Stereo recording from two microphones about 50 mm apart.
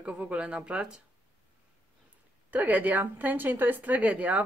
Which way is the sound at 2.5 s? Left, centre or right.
Right.